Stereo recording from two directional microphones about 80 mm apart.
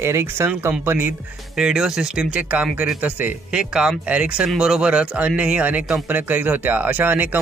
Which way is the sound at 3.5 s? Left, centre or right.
Centre.